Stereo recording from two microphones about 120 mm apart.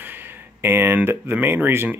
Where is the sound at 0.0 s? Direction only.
15° right (ahead or behind).